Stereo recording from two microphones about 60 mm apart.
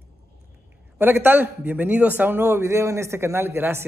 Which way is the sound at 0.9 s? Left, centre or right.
Right.